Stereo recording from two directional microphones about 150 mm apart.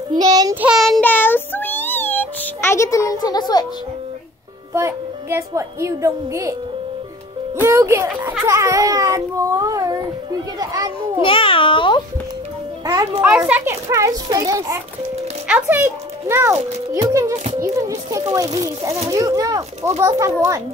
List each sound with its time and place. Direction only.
0.1 s a child's voice: 25° right (ahead or behind)
0.6 s child singing: 5° right (ahead or behind)
1.1 s music: 15° left (ahead or behind)
4.7 s a child's voice: 20° right (ahead or behind)
7.6 s a child's voice: 15° right (ahead or behind)
11.2 s babbling: 35° left (ahead or behind)
12.8 s a child's voice: 25° right (ahead or behind)
15.4 s a child's voice: 10° right (ahead or behind)